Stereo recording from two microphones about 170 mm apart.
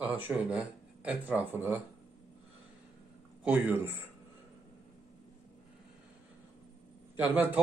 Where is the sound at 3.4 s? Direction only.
10° right (ahead or behind).